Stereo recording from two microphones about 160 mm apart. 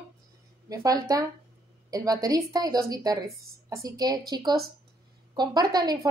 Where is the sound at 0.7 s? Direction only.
20° right (ahead or behind).